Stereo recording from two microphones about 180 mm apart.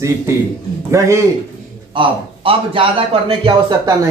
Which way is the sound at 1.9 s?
30° right (ahead or behind).